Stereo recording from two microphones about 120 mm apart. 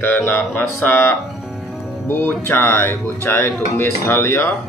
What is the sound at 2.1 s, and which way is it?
Speech, 20° left (ahead or behind).